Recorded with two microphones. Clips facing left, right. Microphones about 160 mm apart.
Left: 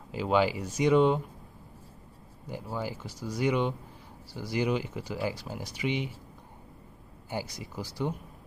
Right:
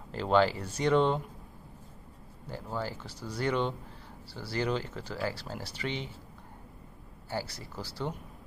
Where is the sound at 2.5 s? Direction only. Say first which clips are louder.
Left 1 dB; 15° left (ahead or behind).